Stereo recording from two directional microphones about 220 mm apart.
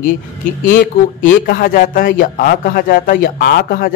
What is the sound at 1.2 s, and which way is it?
A man's voice, 40° left (ahead or behind).